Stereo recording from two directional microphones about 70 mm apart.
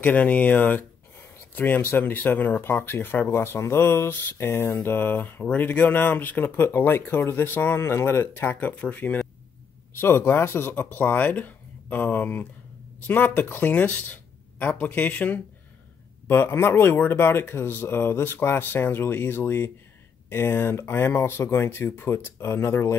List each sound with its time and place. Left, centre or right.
0.0 s speech: left
9.9 s speech: left